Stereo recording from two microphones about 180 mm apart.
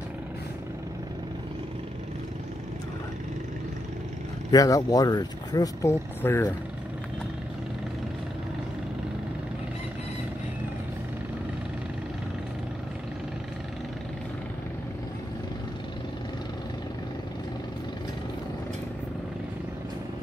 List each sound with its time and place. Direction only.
4.5 s speech: 20° left (ahead or behind)